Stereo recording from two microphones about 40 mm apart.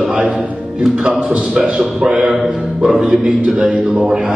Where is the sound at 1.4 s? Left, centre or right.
Centre.